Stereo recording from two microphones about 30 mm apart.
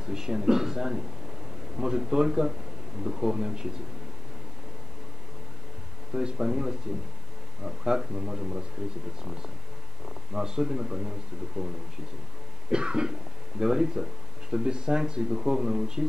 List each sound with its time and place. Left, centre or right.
0.0 s speech: right
6.1 s a man's voice: right
12.6 s speech: right